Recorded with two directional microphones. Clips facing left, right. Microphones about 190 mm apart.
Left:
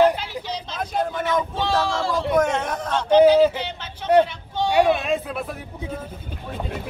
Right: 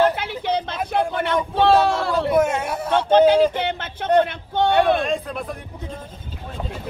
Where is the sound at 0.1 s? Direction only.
55° right (ahead or behind).